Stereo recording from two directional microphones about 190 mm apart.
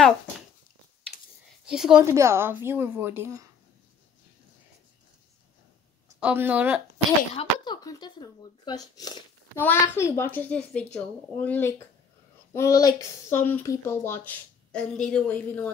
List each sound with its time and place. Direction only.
1.7 s speech: 5° right (ahead or behind)
2.0 s a woman's voice: 15° right (ahead or behind)
6.1 s a woman's voice: 10° right (ahead or behind)
7.3 s speech: 25° left (ahead or behind); by 15.7 s 5° left (ahead or behind)